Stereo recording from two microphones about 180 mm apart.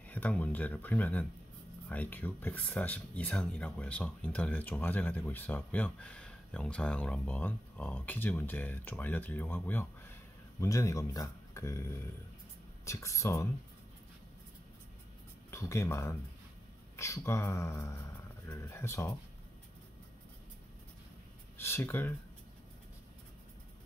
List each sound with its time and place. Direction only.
0.1 s speech: 10° left (ahead or behind)
15.5 s speech: 15° left (ahead or behind)
21.5 s speech: 15° left (ahead or behind)